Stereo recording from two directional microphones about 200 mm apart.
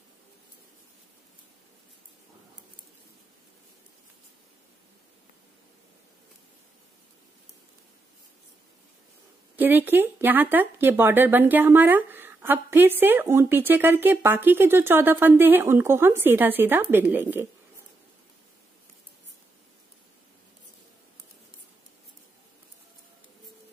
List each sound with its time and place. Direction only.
9.6 s speech: 10° right (ahead or behind)